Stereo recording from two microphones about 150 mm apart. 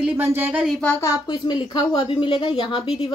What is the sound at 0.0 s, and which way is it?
Speech, 10° right (ahead or behind).